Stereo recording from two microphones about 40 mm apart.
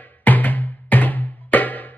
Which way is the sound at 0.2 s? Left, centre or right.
Left.